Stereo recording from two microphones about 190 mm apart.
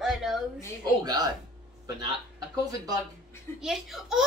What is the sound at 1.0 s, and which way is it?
Speech, 20° right (ahead or behind).